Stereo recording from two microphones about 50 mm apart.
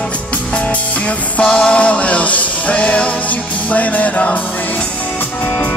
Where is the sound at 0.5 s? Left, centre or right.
Left.